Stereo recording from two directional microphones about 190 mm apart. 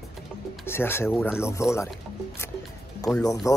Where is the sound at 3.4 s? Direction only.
15° left (ahead or behind).